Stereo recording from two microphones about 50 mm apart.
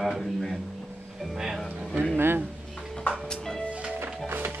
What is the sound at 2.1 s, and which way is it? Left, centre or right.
Speech, right.